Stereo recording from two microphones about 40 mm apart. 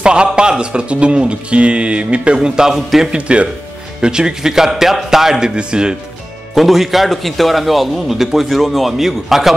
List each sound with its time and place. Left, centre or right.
0.0 s a man's voice: right
2.3 s a man's voice: centre
3.2 s speech: right
4.0 s a man's voice: centre
6.5 s a man's voice: centre